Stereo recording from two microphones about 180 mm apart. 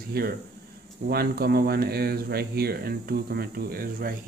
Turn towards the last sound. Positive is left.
turn(degrees=-55)  # may be behind; listen again after turning